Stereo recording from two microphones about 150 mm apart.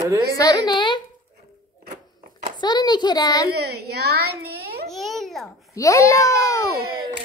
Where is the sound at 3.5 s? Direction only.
90° right.